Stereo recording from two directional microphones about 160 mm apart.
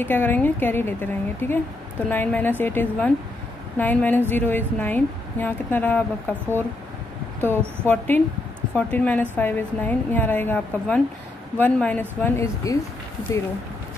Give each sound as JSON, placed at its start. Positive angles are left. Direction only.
{"t": 0.0, "sound": "speech", "side_deg": 10}
{"t": 7.8, "sound": "speech", "side_deg": 10}
{"t": 12.7, "sound": "speech", "side_deg": 20}